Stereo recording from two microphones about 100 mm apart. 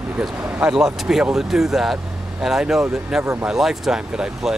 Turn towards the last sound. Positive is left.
turn(degrees=-5)  # may be behind; listen again after turning